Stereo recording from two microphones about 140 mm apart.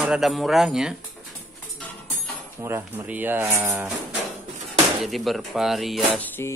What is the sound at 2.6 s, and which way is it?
Speech, 20° right (ahead or behind).